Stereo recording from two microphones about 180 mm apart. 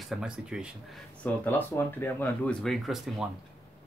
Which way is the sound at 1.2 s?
10° left (ahead or behind).